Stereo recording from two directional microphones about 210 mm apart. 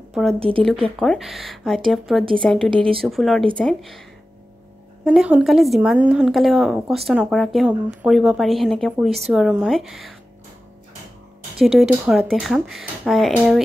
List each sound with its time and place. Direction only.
0.1 s speech: centre (ahead or behind)
0.4 s speech: 25° right (ahead or behind)
0.7 s a woman's voice: centre (ahead or behind)
2.7 s speech: 25° right (ahead or behind)
3.0 s a woman's voice: centre (ahead or behind)
5.0 s a woman's voice: 5° right (ahead or behind)
11.5 s a woman's voice: centre (ahead or behind)